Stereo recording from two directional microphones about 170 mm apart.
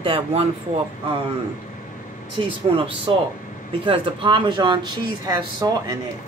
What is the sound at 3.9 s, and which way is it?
Speech, 30° right (ahead or behind).